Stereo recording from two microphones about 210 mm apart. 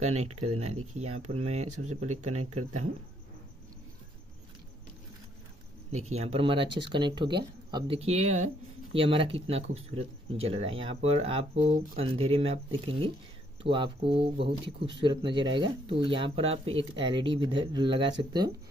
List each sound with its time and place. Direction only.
0.0 s speech: 30° right (ahead or behind)
5.9 s speech: 30° right (ahead or behind)